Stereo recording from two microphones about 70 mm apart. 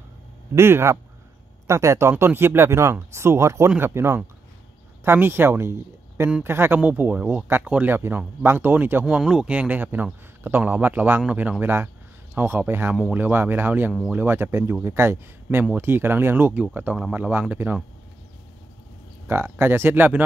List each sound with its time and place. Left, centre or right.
0.6 s speech: right
8.4 s speech: right
9.0 s speech: centre
9.5 s speech: right
11.6 s speech: right
19.2 s speech: right